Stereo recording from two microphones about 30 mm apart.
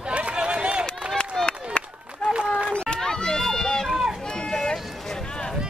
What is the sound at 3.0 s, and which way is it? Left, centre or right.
Run, left.